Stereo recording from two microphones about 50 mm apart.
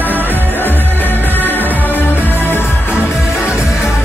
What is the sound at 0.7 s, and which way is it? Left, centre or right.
Music, left.